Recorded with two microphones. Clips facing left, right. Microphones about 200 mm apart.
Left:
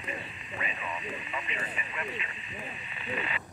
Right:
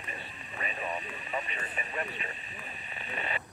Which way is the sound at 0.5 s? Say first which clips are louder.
Right 2 dB; 40° right (ahead or behind).